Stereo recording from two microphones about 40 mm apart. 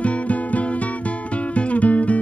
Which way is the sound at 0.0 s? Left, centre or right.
Left.